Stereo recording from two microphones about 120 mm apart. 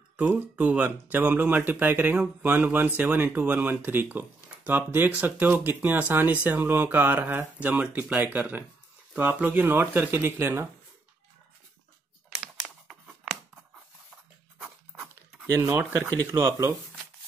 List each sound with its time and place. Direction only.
0.2 s a man's voice: 10° right (ahead or behind)
12.4 s a sound: 5° right (ahead or behind)
14.6 s dog: 5° right (ahead or behind)
15.5 s speech: 25° right (ahead or behind)